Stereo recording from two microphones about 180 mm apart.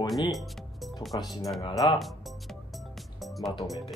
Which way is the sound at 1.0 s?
Centre (ahead or behind).